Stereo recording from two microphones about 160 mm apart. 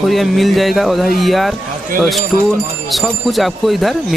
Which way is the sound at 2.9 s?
Centre (ahead or behind).